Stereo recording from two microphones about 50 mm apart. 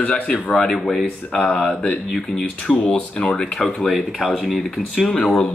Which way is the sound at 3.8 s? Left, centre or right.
Centre.